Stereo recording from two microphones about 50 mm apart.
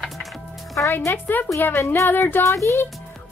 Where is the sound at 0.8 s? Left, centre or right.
Left.